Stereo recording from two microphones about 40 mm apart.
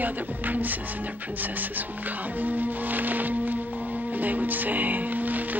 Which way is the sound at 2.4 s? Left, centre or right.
Right.